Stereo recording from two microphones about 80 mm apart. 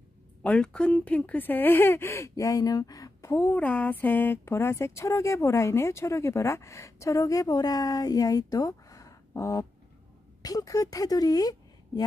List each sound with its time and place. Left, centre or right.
0.4 s speech: centre; by 3.3 s left
3.3 s speech: left